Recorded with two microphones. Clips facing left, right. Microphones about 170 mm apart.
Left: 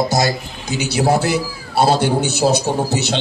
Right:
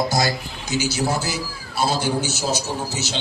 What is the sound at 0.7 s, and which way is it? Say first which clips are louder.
A man's voice: left 6 dB; 60° left (ahead or behind).